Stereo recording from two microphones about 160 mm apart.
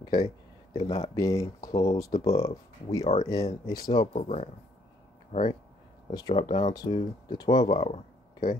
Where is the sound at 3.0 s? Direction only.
40° left (ahead or behind).